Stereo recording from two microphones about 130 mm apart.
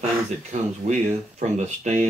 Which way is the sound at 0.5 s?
65° right (ahead or behind).